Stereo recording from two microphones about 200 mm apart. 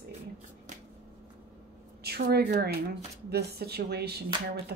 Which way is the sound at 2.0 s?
50° right (ahead or behind).